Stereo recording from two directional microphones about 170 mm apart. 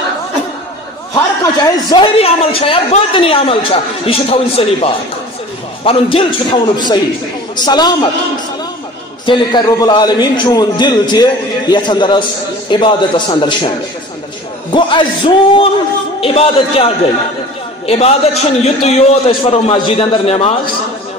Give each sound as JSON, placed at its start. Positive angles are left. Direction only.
{"t": 1.1, "sound": "speech", "side_deg": 20}
{"t": 2.1, "sound": "a man's voice", "side_deg": 35}
{"t": 7.6, "sound": "a man's voice", "side_deg": 25}
{"t": 9.2, "sound": "a man's voice", "side_deg": 25}
{"t": 14.7, "sound": "a man's voice", "side_deg": 30}